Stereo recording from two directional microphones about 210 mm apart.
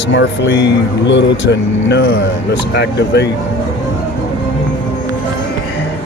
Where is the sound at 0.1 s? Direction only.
60° left (ahead or behind).